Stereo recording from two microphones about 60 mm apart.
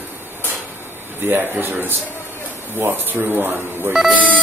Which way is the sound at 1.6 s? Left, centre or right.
Right.